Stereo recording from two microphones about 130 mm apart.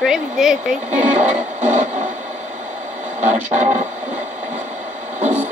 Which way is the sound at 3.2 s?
65° right (ahead or behind).